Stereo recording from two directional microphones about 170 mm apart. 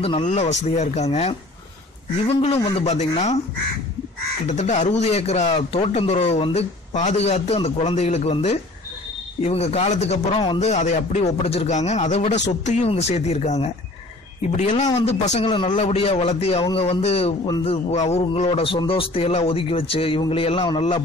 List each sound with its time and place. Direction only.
0.0 s speech: 40° left (ahead or behind)
4.5 s speech: 45° left (ahead or behind)
10.7 s speech: 45° left (ahead or behind)